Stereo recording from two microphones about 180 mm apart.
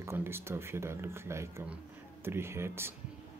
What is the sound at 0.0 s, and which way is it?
Speech, 15° right (ahead or behind).